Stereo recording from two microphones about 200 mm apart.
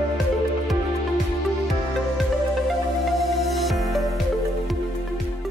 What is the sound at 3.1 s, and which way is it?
Music, centre (ahead or behind).